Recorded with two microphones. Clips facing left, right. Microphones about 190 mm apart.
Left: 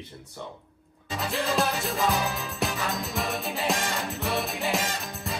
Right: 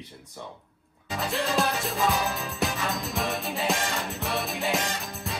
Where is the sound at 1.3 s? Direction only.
Centre (ahead or behind).